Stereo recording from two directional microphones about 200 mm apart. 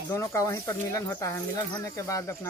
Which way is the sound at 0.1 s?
15° left (ahead or behind).